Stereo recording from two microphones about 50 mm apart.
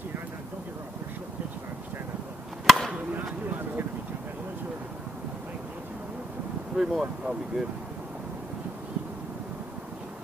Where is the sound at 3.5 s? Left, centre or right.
Right.